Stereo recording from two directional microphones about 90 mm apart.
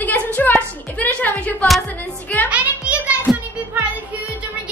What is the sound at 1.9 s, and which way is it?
Music, 20° left (ahead or behind).